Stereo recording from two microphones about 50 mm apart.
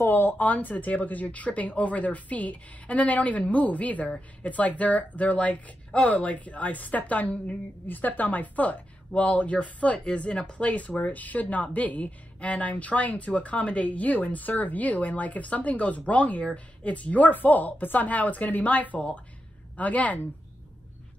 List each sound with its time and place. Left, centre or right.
0.0 s a woman's voice: left